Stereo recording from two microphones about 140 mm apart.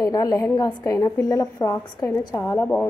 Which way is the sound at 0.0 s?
25° left (ahead or behind).